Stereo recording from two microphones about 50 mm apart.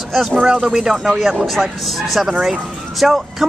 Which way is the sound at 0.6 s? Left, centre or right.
Centre.